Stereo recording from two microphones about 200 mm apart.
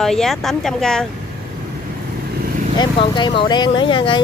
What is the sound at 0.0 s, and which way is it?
Speech, centre (ahead or behind).